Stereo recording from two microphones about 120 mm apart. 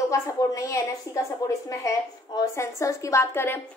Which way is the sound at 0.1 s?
25° left (ahead or behind).